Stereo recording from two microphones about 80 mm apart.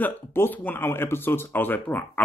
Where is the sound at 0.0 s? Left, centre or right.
Left.